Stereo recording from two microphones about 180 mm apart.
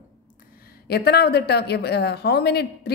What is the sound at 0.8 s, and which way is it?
A woman's voice, 65° left (ahead or behind).